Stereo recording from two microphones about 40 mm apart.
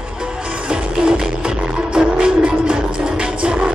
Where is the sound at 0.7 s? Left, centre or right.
Right.